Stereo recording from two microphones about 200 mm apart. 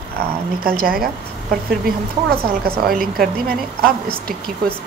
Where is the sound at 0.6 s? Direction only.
45° right (ahead or behind).